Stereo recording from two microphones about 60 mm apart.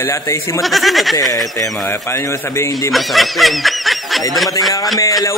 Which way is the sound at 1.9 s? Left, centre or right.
Left.